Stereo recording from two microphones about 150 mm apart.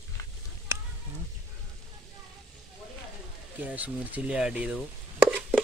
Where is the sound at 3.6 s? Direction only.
10° right (ahead or behind).